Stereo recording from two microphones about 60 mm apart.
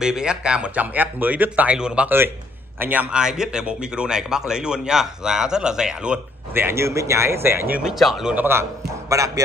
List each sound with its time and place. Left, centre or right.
0.0 s speech: centre
0.9 s speech: right
1.8 s speech: centre
2.0 s a man's voice: right
3.1 s speech: centre
6.5 s speech: right
7.8 s speech: centre
9.1 s speech: right